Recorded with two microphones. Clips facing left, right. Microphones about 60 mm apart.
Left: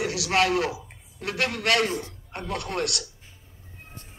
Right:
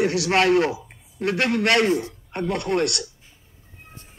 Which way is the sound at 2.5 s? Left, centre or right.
Right.